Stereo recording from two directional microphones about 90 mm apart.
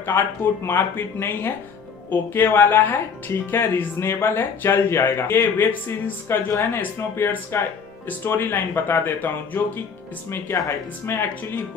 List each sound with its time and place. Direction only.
0.2 s speech: 25° left (ahead or behind)
10.5 s speech: 40° left (ahead or behind)
11.1 s speech: 25° left (ahead or behind)